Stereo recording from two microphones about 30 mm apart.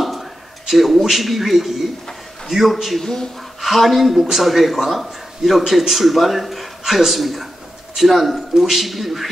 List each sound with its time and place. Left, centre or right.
0.0 s a sound: centre
2.7 s speech: centre
3.0 s speech: centre
3.6 s speech: centre